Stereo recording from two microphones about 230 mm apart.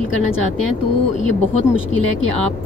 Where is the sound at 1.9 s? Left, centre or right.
Right.